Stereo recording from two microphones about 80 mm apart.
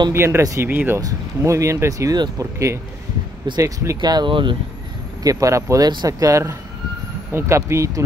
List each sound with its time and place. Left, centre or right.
0.1 s speech: right
1.0 s speech: right
4.0 s speech: right
5.2 s speech: right